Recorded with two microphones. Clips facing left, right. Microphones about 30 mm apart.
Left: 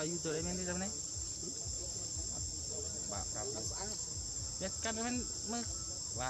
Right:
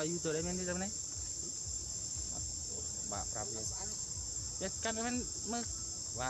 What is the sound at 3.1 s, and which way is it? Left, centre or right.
Speech, centre.